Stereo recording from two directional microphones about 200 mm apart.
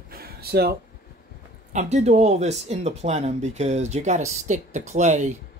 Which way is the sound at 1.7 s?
35° right (ahead or behind).